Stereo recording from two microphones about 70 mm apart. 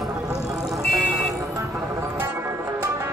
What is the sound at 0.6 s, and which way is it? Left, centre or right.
Vehicle, centre.